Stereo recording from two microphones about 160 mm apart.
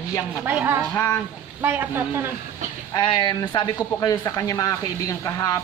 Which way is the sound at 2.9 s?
30° left (ahead or behind).